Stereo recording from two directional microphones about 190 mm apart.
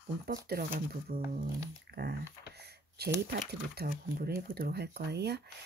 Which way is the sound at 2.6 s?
60° right (ahead or behind).